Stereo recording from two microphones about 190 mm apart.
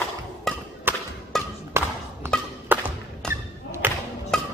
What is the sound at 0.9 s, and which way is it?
Whip, 10° right (ahead or behind).